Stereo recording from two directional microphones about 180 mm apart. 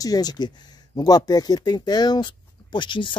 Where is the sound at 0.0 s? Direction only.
20° left (ahead or behind).